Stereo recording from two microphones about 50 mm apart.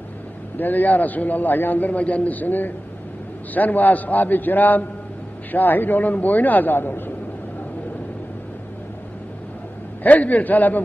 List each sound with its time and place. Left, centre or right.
0.6 s a man's voice: left
10.0 s a man's voice: left